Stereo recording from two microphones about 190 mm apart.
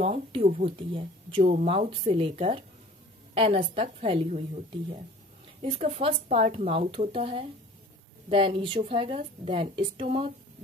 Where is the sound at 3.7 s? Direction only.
30° right (ahead or behind).